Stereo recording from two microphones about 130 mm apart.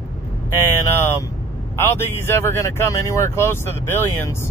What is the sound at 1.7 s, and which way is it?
Speech, 20° left (ahead or behind).